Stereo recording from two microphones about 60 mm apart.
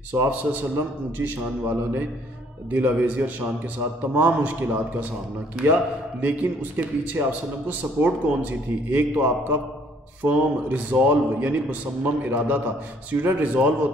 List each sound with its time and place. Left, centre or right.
0.1 s a man's voice: right
6.2 s a man's voice: right